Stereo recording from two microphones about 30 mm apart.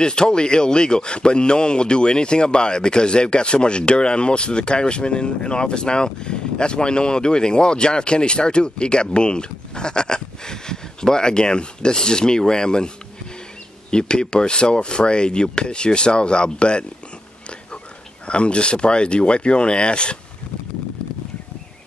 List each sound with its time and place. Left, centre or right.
0.0 s speech: left
18.2 s speech: left